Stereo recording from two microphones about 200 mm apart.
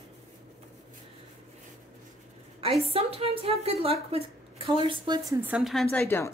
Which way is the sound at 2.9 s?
30° right (ahead or behind).